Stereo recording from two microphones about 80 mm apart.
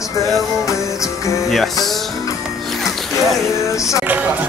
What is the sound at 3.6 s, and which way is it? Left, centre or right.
Music, left.